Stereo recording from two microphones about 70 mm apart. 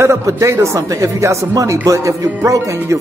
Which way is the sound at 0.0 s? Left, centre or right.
Right.